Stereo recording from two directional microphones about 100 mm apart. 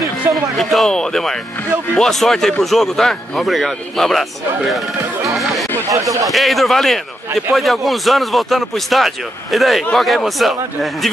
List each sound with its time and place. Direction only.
0.0 s speech: centre (ahead or behind)
5.9 s speech: 35° right (ahead or behind)
6.2 s speech: centre (ahead or behind)